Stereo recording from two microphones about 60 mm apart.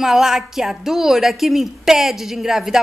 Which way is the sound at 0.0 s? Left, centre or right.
Centre.